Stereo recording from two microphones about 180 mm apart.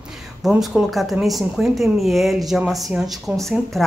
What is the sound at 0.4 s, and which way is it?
Speech, 5° right (ahead or behind).